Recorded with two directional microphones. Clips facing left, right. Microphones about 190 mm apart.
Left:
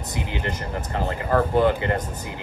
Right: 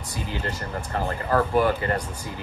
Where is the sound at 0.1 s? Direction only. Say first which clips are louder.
Left 1 dB; 20° left (ahead or behind).